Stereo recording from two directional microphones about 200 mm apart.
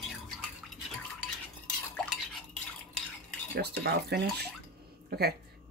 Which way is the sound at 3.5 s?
55° right (ahead or behind).